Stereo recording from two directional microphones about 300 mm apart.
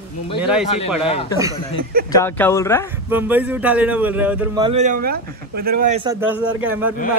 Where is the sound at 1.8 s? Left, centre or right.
Right.